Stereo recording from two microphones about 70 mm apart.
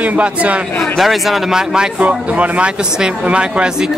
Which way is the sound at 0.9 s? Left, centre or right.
Centre.